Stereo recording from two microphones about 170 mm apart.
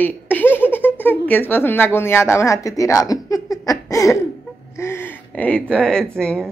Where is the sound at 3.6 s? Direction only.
20° left (ahead or behind).